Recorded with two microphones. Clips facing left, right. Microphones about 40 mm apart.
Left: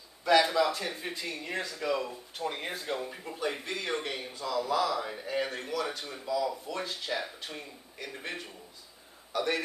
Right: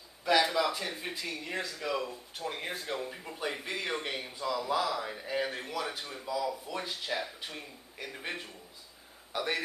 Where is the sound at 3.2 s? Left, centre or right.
Centre.